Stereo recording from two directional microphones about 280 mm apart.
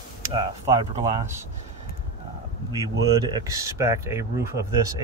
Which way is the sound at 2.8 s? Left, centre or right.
Centre.